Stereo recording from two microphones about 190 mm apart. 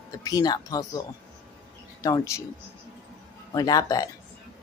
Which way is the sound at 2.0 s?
15° left (ahead or behind).